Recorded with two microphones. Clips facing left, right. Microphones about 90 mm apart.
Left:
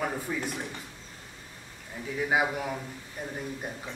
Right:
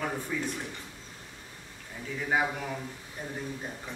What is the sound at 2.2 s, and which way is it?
Speech, 10° left (ahead or behind).